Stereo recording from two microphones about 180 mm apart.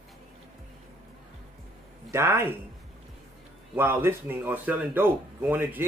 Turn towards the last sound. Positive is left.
turn(degrees=-10)  # may be behind; listen again after turning